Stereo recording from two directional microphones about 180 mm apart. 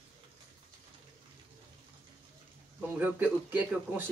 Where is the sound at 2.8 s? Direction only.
10° right (ahead or behind).